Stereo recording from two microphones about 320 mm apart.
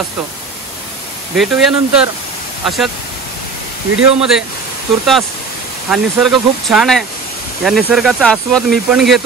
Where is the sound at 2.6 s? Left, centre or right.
Centre.